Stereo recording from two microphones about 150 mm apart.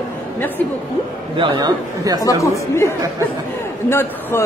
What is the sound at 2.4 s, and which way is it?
A man's voice, 20° left (ahead or behind).